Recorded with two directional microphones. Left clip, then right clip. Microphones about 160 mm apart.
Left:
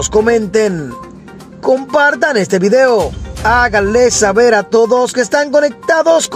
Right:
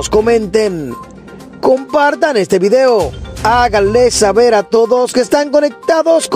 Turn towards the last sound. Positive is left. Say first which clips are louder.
# even
turn(degrees=-35)  # may be behind; listen again after turning